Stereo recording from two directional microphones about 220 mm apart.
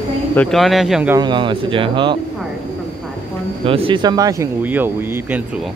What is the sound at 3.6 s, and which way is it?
Speech, 25° right (ahead or behind).